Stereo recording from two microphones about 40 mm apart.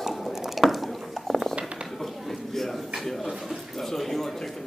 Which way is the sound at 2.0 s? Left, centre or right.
Centre.